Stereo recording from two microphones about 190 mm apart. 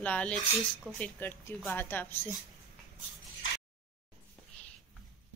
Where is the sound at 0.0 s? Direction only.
5° left (ahead or behind).